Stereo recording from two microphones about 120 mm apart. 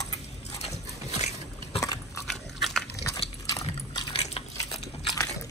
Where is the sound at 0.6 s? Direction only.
65° left (ahead or behind).